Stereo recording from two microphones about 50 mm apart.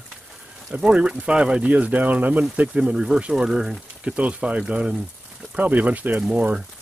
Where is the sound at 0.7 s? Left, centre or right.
Centre.